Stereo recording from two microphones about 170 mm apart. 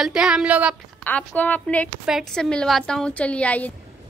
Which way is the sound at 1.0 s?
10° left (ahead or behind).